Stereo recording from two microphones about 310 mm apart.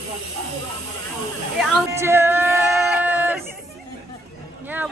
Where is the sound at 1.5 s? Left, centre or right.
Centre.